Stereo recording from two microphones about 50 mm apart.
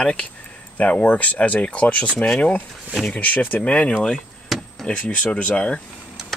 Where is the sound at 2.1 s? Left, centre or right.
Centre.